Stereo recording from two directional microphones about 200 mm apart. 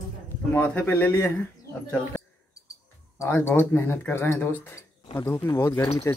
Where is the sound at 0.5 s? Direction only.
10° left (ahead or behind).